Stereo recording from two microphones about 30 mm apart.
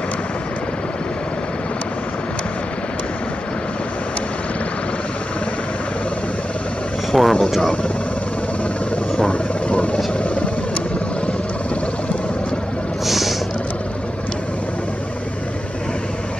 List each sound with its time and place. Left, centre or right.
7.1 s vehicle: centre
9.3 s vehicle: left
13.0 s vehicle: centre